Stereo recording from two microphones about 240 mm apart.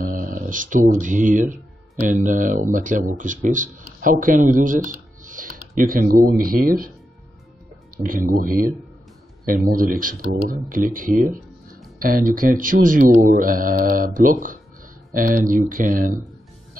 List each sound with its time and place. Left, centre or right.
0.0 s speech: right
8.3 s speech: right